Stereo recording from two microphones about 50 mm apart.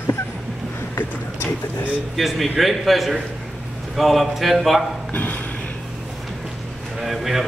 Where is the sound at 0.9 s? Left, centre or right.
Left.